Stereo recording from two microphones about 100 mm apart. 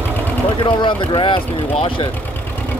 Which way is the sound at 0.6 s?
55° left (ahead or behind).